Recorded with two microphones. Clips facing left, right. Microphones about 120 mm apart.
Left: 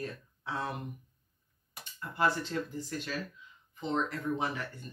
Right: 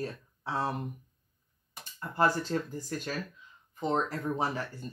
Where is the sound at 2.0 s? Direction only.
45° right (ahead or behind).